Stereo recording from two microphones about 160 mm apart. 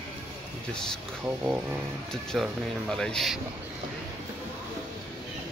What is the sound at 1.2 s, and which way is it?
Speech, 5° right (ahead or behind).